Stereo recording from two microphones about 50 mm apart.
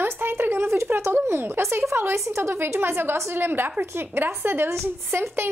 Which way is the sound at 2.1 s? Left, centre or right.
Right.